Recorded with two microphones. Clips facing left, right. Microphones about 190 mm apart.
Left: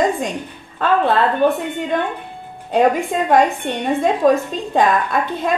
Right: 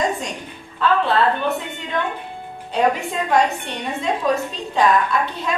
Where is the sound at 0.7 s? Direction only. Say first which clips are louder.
Left 2 dB; 50° left (ahead or behind).